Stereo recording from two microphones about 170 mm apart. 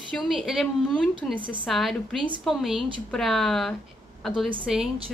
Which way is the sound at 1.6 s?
Centre (ahead or behind).